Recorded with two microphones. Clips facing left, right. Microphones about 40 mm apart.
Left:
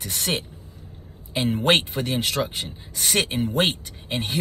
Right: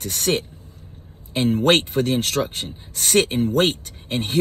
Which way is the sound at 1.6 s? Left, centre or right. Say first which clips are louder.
Right 3 dB; centre.